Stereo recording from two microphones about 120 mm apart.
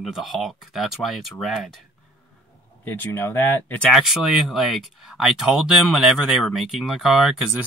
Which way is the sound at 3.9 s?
Centre (ahead or behind).